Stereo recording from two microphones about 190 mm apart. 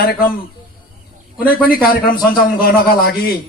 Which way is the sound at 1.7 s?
50° left (ahead or behind).